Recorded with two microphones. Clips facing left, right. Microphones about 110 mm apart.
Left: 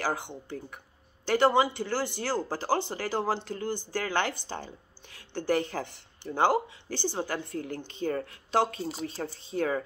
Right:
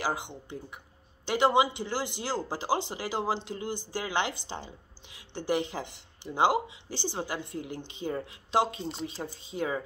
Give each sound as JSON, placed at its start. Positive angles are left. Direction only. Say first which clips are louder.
{"t": 0.0, "sound": "a woman's voice", "louder": "left 1 dB", "side_deg": -15}